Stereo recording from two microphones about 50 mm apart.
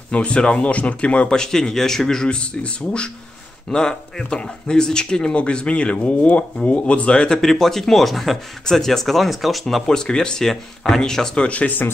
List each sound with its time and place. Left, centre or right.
0.1 s speech: left
1.4 s speech: centre
7.4 s speech: centre
9.8 s speech: centre
11.4 s speech: left